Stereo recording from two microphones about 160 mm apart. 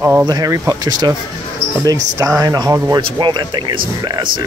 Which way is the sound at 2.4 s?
25° right (ahead or behind).